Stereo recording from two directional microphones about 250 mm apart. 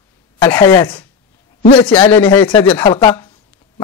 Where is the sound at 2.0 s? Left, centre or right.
Centre.